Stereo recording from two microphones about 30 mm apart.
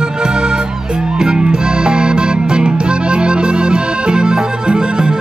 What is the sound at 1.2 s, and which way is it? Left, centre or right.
Music, right.